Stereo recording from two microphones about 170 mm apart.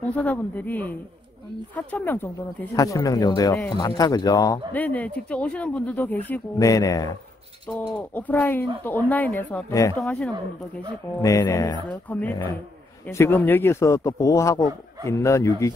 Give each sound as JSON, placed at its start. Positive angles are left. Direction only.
{"t": 0.0, "sound": "speech", "side_deg": 10}
{"t": 4.7, "sound": "speech", "side_deg": 10}
{"t": 6.7, "sound": "speech", "side_deg": 20}
{"t": 7.9, "sound": "speech", "side_deg": 10}
{"t": 9.9, "sound": "speech", "side_deg": 5}
{"t": 11.1, "sound": "speech", "side_deg": 20}
{"t": 11.9, "sound": "speech", "side_deg": 10}